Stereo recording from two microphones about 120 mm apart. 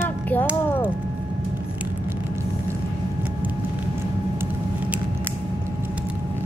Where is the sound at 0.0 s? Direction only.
15° left (ahead or behind).